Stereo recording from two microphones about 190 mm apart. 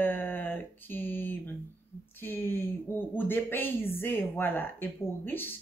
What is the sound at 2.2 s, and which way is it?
Speech, 10° left (ahead or behind).